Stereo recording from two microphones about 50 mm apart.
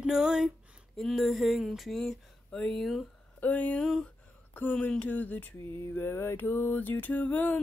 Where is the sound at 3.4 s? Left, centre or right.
Left.